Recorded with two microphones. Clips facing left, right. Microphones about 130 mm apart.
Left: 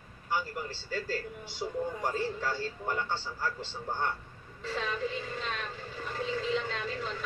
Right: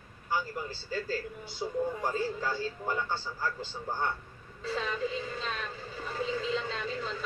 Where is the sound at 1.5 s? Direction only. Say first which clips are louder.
Right 2 dB; centre (ahead or behind).